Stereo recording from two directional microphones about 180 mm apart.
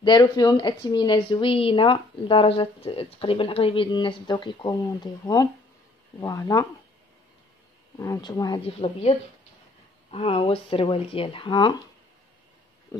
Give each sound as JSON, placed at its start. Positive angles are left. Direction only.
{"t": 0.0, "sound": "speech", "side_deg": 25}
{"t": 8.0, "sound": "speech", "side_deg": 20}
{"t": 10.1, "sound": "speech", "side_deg": 30}